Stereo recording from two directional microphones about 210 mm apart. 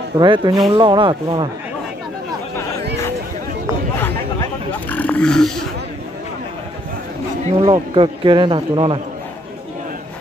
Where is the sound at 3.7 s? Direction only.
10° right (ahead or behind).